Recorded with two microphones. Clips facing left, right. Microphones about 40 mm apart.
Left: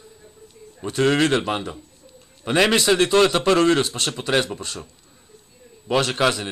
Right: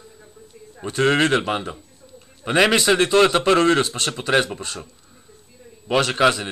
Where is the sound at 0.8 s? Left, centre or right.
Centre.